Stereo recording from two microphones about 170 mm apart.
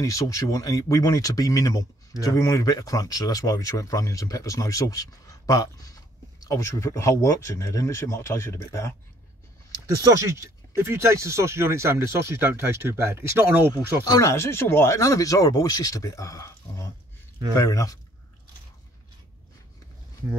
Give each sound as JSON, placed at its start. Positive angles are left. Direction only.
{"t": 0.0, "sound": "speech", "side_deg": 20}
{"t": 9.8, "sound": "speech", "side_deg": -20}
{"t": 14.0, "sound": "speech", "side_deg": 20}